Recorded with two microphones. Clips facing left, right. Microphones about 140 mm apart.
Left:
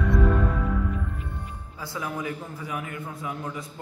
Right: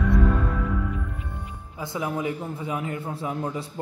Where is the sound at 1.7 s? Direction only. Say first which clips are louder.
Right 4 dB; 20° right (ahead or behind).